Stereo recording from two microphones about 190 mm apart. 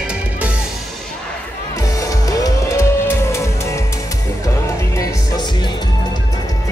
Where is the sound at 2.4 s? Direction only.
15° left (ahead or behind).